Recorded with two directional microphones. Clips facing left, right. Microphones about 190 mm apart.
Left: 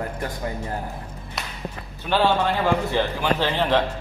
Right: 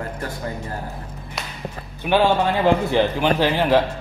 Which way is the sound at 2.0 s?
15° right (ahead or behind).